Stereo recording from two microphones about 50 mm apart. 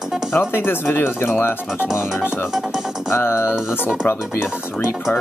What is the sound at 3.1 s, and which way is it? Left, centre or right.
Music, left.